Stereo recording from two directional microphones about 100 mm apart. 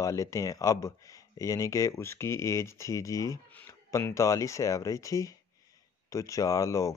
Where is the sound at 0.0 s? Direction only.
30° left (ahead or behind).